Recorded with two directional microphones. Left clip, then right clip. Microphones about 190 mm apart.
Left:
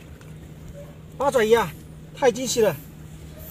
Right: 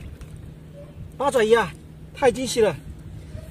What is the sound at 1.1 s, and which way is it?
Speech, 30° right (ahead or behind).